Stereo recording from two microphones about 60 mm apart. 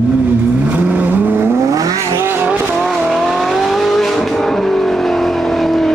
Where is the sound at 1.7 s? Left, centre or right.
Right.